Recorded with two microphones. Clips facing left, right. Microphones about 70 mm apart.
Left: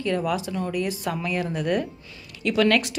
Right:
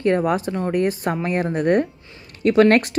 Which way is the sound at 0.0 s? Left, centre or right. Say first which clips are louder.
Right 6 dB; right.